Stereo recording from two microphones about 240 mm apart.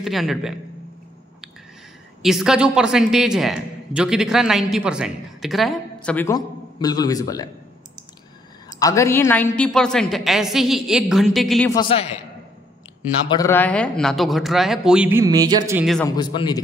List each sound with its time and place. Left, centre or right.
0.0 s a woman's voice: centre
2.2 s a woman's voice: centre
8.7 s a woman's voice: centre
11.7 s a man's voice: left
13.3 s a woman's voice: centre
16.2 s a man's voice: centre